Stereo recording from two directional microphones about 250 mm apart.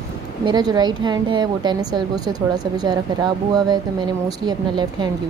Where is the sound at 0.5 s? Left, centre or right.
Centre.